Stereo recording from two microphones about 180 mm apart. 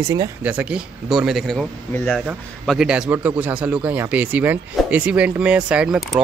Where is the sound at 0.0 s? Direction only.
20° right (ahead or behind).